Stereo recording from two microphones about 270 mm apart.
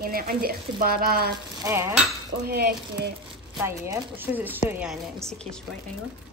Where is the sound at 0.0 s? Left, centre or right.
Right.